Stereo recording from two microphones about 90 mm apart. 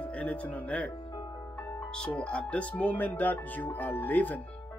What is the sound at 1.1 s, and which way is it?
Music, 60° left (ahead or behind).